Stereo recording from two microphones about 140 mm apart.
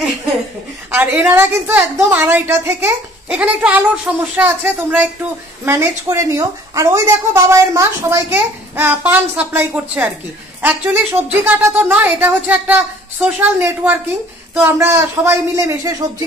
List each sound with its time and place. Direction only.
0.9 s speech: 15° right (ahead or behind)